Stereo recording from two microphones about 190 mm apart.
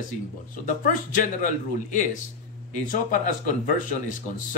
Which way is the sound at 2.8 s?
45° left (ahead or behind).